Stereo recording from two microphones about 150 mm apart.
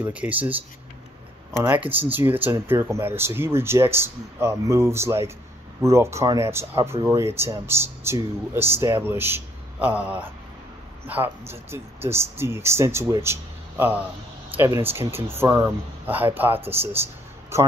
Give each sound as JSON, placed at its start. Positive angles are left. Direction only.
{"t": 0.0, "sound": "speech", "side_deg": -10}
{"t": 1.6, "sound": "a man's voice", "side_deg": -10}